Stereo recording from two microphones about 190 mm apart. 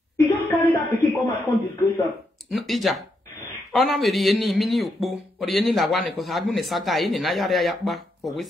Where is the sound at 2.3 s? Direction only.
Centre (ahead or behind).